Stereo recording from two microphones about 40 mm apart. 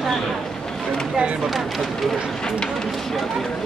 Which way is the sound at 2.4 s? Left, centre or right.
Centre.